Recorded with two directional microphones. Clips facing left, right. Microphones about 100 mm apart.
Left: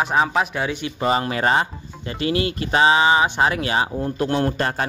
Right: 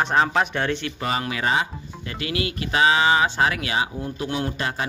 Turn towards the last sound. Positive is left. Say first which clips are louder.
# left 5 dB
turn(degrees=45)  # may be behind; listen again after turning